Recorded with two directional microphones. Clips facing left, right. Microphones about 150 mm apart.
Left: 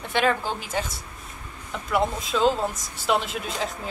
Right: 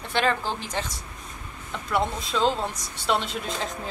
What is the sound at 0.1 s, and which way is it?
Speech, 5° left (ahead or behind).